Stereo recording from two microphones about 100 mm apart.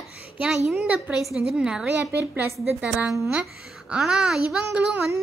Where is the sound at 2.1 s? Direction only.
20° right (ahead or behind).